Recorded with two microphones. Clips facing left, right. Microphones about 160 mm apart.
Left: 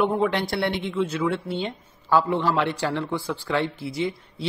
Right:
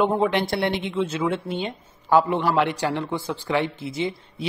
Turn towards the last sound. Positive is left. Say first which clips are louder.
# even
turn(degrees=-20)  # may be behind; listen again after turning